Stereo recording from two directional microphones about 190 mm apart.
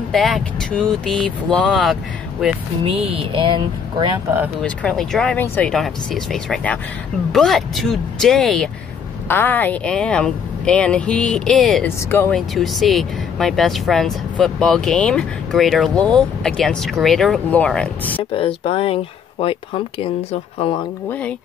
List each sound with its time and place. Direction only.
0.1 s speech: centre (ahead or behind)
2.8 s speech: 30° right (ahead or behind)
4.6 s speech: 5° left (ahead or behind)
12.1 s speech: 10° left (ahead or behind)
12.4 s speech: centre (ahead or behind)
18.3 s speech: 30° left (ahead or behind)